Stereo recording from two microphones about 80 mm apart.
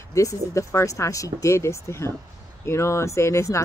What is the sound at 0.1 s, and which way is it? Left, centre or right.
Speech, left.